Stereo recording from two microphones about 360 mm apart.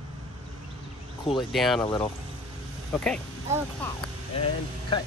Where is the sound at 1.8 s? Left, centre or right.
Centre.